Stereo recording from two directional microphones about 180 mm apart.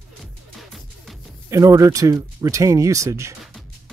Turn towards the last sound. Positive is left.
turn(degrees=-15)  # may be behind; listen again after turning